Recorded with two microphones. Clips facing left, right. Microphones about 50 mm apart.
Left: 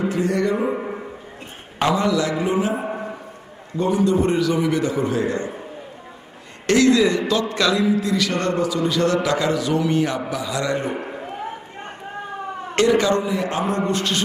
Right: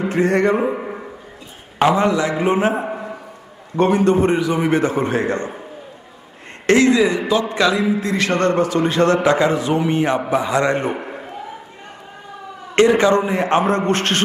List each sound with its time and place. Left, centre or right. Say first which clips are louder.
0.0 s a sound: right 4 dB; right
0.7 s a sound: right 1 dB; centre
1.8 s a man's voice: right 4 dB; right
2.4 s a man's voice: right 4 dB; right
3.7 s a man's voice: right 4 dB; right
4.2 s a man's voice: right 2 dB; right
4.6 s a man's voice: right 3 dB; right
6.6 s a man's voice: right 2 dB; right
8.0 s a man's voice: right 3 dB; right
12.7 s a man's voice: right 4 dB; right
13.3 s a man's voice: right 6 dB; right